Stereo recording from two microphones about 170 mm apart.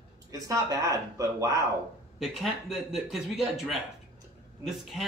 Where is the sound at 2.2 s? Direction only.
Centre (ahead or behind).